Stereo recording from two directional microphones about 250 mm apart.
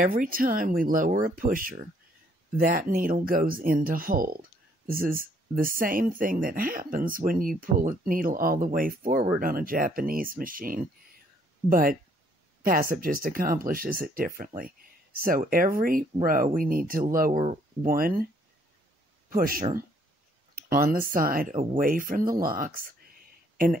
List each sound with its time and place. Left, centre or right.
0.0 s speech: right
19.3 s speech: right